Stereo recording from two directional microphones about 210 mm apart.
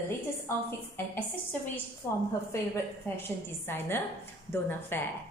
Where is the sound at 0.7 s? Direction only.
10° left (ahead or behind).